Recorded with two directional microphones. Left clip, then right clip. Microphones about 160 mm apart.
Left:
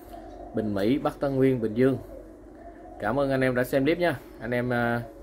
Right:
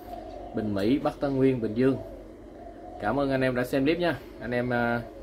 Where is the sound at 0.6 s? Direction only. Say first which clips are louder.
Left 1 dB; 30° left (ahead or behind).